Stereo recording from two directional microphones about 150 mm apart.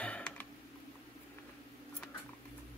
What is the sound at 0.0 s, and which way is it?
Computer keyboard, 10° left (ahead or behind).